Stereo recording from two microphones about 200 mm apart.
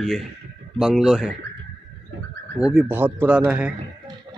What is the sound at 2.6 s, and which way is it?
Speech, 5° right (ahead or behind).